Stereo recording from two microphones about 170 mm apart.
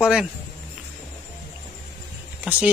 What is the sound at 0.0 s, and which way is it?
Speech, 5° right (ahead or behind).